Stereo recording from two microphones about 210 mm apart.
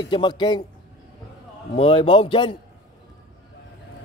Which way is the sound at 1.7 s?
25° left (ahead or behind).